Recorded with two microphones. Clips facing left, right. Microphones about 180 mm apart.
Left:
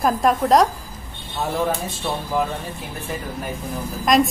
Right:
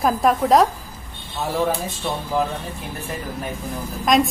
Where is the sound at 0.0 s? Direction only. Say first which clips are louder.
Even; centre (ahead or behind).